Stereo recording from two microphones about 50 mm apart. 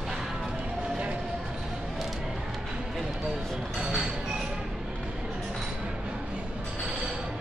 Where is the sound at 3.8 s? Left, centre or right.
Centre.